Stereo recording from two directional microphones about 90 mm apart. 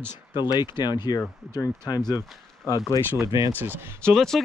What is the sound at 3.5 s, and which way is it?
Speech, 20° right (ahead or behind).